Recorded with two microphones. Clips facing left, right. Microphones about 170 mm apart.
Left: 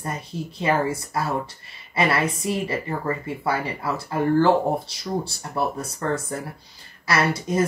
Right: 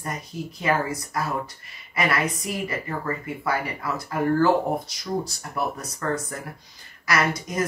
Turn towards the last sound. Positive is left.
turn(degrees=30)  # may be behind; listen again after turning